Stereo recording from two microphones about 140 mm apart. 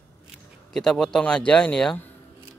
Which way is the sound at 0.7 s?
5° left (ahead or behind).